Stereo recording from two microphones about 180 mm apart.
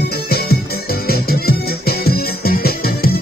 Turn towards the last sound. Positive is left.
turn(degrees=55)  # may be behind; listen again after turning